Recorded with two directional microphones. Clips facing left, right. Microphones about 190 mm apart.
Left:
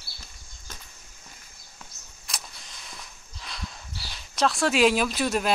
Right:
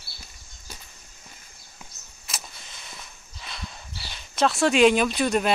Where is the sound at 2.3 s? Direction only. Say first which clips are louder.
Right 1 dB; 5° right (ahead or behind).